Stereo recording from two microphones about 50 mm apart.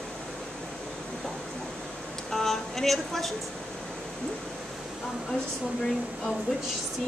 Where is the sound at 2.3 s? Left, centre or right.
Centre.